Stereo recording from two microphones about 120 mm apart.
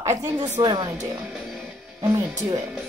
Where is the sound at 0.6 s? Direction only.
40° right (ahead or behind).